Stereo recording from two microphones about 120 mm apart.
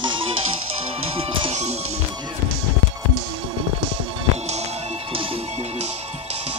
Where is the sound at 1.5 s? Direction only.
70° right (ahead or behind).